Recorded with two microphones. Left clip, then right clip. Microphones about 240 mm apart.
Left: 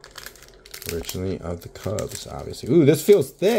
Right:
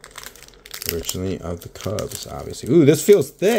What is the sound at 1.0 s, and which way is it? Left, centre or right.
Speech, centre.